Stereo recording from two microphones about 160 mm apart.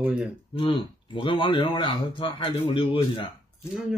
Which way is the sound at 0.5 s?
30° left (ahead or behind).